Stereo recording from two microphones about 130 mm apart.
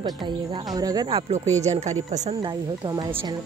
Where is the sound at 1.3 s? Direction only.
60° right (ahead or behind).